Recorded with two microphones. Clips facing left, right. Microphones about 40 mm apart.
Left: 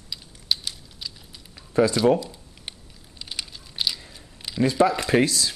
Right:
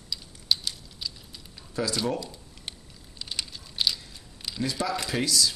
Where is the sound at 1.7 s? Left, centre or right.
Left.